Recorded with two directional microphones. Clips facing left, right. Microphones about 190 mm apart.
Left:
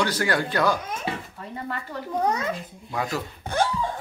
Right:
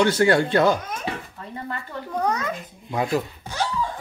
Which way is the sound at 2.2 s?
25° left (ahead or behind).